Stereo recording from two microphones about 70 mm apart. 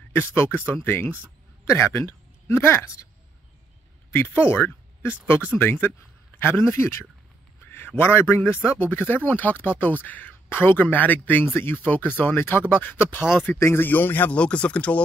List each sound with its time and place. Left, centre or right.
0.1 s speech: left
1.7 s speech: left
4.1 s a man's voice: left
14.3 s speech: centre